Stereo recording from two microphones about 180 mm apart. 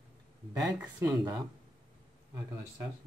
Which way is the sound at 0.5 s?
20° right (ahead or behind).